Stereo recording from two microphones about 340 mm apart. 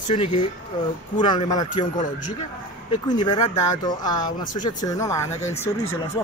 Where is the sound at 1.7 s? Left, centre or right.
Left.